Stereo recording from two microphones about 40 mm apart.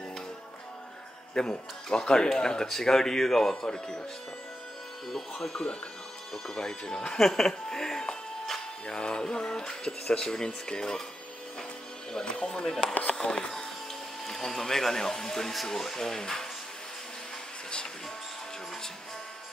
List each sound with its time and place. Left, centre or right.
1.4 s speech: centre
3.6 s speech: left
5.4 s speech: centre
8.5 s music: centre
9.2 s speech: centre
12.4 s speech: centre
14.2 s speech: centre